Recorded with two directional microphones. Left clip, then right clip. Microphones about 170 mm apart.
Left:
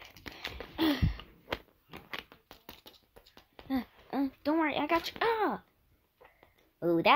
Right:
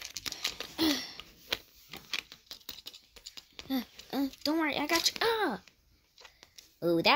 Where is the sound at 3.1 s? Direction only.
30° left (ahead or behind).